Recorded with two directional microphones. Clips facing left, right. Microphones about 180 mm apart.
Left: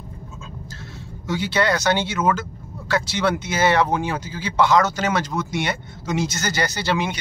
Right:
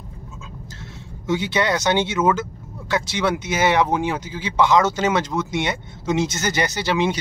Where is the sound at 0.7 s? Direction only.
20° right (ahead or behind).